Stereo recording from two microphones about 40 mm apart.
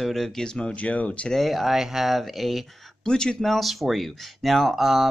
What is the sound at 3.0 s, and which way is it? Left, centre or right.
Speech, centre.